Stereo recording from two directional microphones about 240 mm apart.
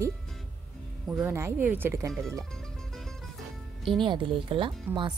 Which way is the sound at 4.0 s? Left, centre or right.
Centre.